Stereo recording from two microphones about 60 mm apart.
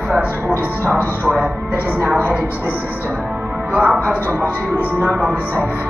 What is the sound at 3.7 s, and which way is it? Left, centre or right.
Speech, right.